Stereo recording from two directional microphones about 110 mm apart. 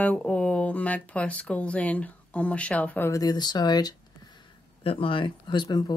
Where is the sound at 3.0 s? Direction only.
35° left (ahead or behind).